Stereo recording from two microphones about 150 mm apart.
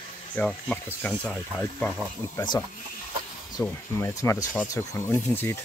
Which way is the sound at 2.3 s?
30° left (ahead or behind).